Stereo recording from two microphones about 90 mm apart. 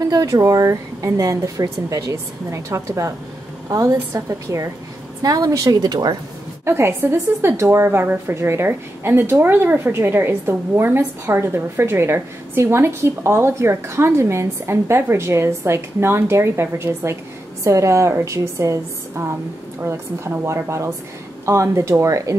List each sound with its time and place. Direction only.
0.0 s speech: 45° right (ahead or behind)
6.6 s a woman's voice: 30° right (ahead or behind)